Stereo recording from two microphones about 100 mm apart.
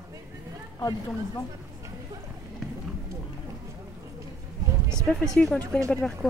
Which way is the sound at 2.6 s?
Centre (ahead or behind).